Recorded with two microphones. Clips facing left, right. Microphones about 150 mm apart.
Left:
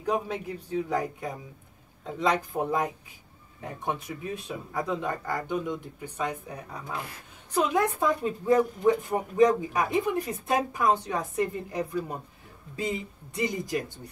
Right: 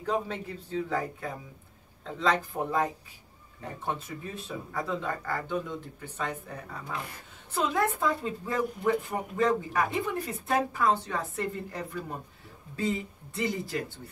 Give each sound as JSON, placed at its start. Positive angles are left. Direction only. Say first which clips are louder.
{"t": 0.0, "sound": "speech", "louder": "left 2 dB", "side_deg": 10}
{"t": 4.5, "sound": "speech", "louder": "left 1 dB", "side_deg": 15}